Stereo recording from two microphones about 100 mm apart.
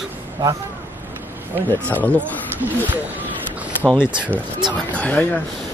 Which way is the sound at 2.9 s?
15° right (ahead or behind).